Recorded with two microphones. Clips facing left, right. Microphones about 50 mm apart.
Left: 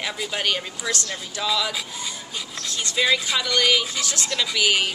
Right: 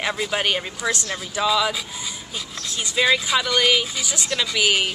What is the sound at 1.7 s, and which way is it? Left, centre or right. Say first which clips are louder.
Speech: right 2 dB; centre.